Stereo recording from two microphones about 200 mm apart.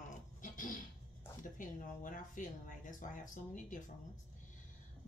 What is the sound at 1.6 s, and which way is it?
Speech, 40° left (ahead or behind).